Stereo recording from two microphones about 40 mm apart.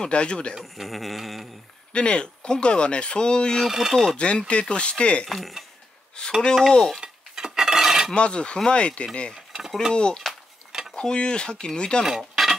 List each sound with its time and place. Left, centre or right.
0.0 s speech: left
0.6 s a sound: centre
1.9 s speech: left
3.6 s speech: centre
3.9 s stir: centre
4.2 s speech: left
5.2 s a sound: centre
6.4 s stir: centre
7.0 s cutlery: centre
8.1 s speech: left